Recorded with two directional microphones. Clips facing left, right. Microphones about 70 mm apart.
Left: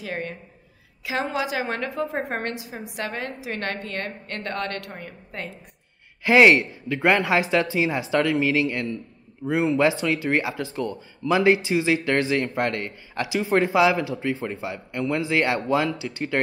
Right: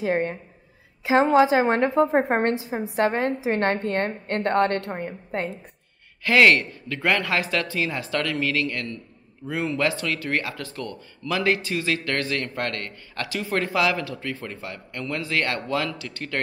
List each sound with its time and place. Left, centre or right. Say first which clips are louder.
0.0 s a woman's voice: right 7 dB; right
6.2 s a man's voice: left 2 dB; centre